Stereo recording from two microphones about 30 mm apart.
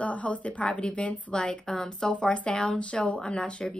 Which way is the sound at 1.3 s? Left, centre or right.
Left.